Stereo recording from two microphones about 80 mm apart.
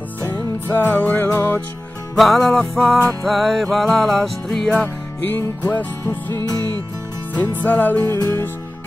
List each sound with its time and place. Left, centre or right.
0.2 s music: left
2.1 s music: centre
5.6 s music: left